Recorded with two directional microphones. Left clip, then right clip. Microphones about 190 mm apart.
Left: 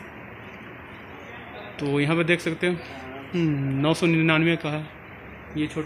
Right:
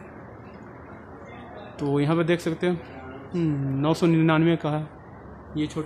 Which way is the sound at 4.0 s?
10° right (ahead or behind).